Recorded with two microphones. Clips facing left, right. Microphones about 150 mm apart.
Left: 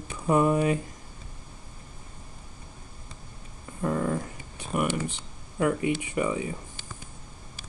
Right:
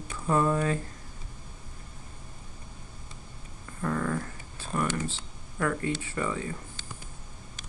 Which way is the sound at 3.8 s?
20° left (ahead or behind).